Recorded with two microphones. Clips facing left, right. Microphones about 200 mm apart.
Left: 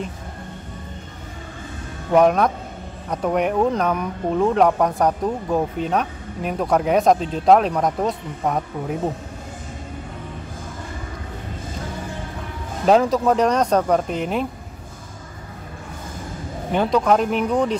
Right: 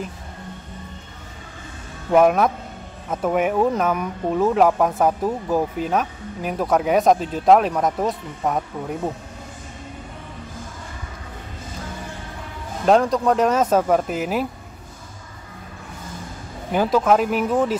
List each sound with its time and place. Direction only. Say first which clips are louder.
2.0 s speech: even; 5° right (ahead or behind)
12.8 s speech: left 1 dB; centre (ahead or behind)
16.7 s speech: even; 5° right (ahead or behind)